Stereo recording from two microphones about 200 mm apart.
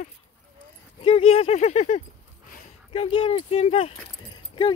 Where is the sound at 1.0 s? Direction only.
30° left (ahead or behind).